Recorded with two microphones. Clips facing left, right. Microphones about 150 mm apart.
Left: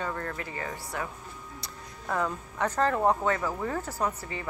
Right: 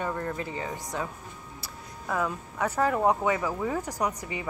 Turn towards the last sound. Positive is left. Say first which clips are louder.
# right 1 dB
turn(degrees=-15)  # may be behind; listen again after turning